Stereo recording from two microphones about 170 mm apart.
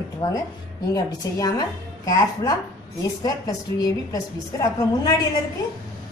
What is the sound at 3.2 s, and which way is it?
A woman's voice, 20° left (ahead or behind).